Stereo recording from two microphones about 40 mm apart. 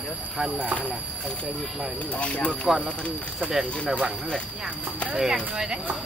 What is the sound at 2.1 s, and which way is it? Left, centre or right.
Speech, left.